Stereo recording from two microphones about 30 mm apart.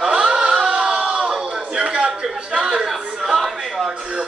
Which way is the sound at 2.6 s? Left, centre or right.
Centre.